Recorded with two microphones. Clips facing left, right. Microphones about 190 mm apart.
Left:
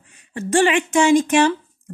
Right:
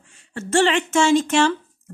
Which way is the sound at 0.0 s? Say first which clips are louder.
Left 4 dB; 15° left (ahead or behind).